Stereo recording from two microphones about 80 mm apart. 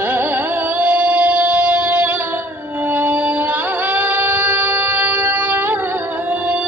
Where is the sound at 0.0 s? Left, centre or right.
Right.